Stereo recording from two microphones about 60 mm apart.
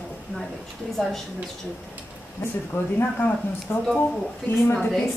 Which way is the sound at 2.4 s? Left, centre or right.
Left.